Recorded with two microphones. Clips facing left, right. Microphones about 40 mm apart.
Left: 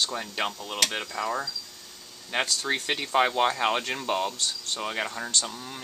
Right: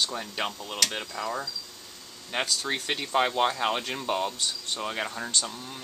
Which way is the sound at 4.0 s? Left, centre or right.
Centre.